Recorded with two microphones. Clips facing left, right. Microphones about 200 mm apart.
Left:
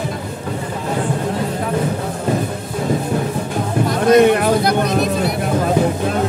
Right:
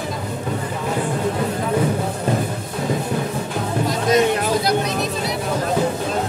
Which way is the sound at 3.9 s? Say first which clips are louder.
Left 7 dB; 60° left (ahead or behind).